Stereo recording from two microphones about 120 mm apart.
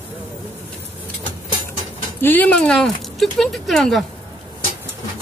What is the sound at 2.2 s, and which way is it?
Speech, 15° left (ahead or behind).